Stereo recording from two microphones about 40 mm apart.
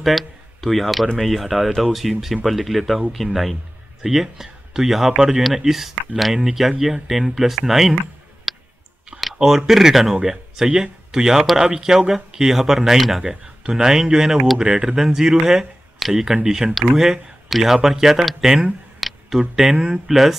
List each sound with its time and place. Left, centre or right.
0.0 s speech: centre
8.5 s clicking: centre
9.4 s speech: centre
10.3 s a sound: centre
10.7 s speech: centre
13.2 s speech: centre
15.0 s speech: centre
18.9 s tick: centre
19.5 s speech: centre